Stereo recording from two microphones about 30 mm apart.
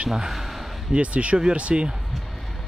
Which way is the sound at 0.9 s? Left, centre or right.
Right.